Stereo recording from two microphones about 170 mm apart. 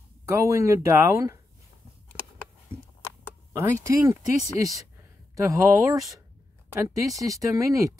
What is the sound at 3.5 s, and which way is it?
Speech, 20° right (ahead or behind).